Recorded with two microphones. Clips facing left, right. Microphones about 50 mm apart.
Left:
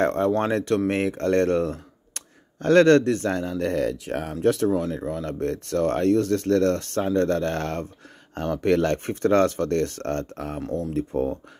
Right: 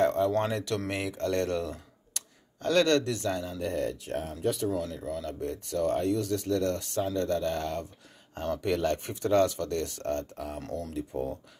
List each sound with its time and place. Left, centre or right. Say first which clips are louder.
0.0 s speech: left 4 dB; left
4.7 s speech: left 7 dB; left
10.6 s speech: left 10 dB; left
10.9 s speech: left 9 dB; left